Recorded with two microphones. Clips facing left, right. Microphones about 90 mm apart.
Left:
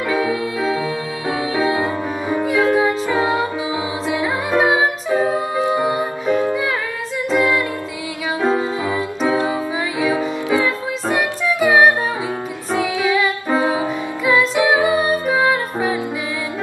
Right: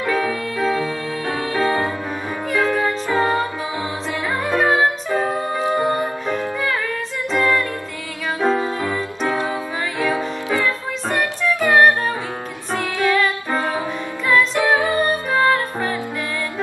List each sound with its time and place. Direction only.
0.1 s music: 10° left (ahead or behind)
7.3 s music: 15° left (ahead or behind)